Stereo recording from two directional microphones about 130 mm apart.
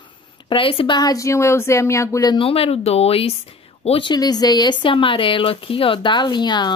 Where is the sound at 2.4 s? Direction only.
45° left (ahead or behind).